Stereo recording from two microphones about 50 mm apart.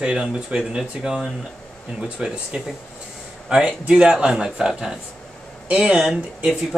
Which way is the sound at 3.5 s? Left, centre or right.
Right.